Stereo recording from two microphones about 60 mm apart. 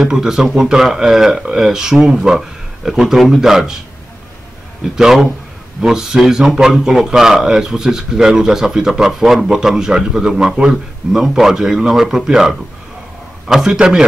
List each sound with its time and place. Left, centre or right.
0.0 s speech: centre
4.9 s speech: centre
13.7 s speech: centre